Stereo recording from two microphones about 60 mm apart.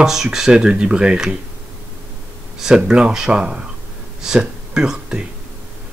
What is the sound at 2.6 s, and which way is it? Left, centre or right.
Speech, centre.